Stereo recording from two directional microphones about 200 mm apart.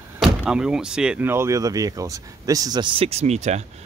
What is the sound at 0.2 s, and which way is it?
Speech, centre (ahead or behind).